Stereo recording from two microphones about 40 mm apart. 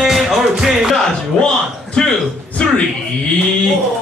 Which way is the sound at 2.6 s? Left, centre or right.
Left.